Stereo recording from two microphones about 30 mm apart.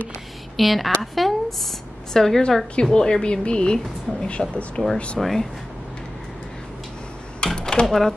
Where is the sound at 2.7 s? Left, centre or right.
Left.